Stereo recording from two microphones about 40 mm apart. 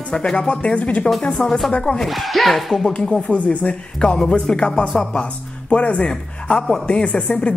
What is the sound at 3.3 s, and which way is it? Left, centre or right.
Speech, left.